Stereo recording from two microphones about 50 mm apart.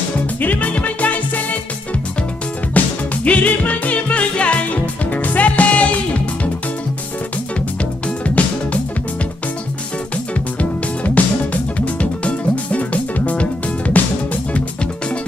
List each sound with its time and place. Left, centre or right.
0.4 s music: left
2.8 s music: left
11.1 s music: left